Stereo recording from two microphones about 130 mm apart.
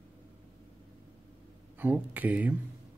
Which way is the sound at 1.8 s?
15° right (ahead or behind).